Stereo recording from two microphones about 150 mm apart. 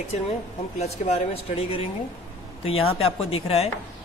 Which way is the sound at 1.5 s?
40° left (ahead or behind).